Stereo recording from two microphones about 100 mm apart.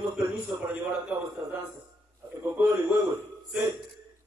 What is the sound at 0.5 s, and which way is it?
Speech, 40° right (ahead or behind).